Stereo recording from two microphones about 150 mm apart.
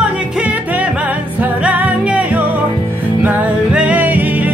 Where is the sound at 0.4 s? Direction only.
10° right (ahead or behind).